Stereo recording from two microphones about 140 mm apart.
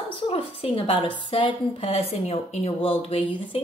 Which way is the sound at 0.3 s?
40° left (ahead or behind).